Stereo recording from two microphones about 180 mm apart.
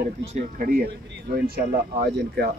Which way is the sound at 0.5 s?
50° right (ahead or behind).